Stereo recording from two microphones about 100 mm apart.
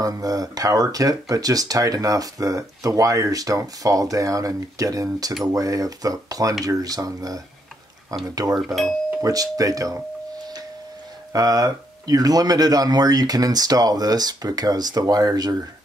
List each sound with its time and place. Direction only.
0.0 s speech: 35° right (ahead or behind)
8.5 s speech: centre (ahead or behind)
9.2 s speech: 35° right (ahead or behind)
11.3 s speech: 35° right (ahead or behind)